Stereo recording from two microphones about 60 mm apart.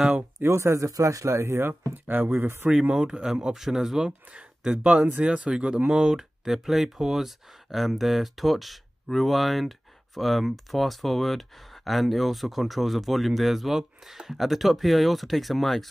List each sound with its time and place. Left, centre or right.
0.4 s speech: right
2.0 s speech: right
2.7 s speech: centre
4.3 s speech: right; by 15.9 s centre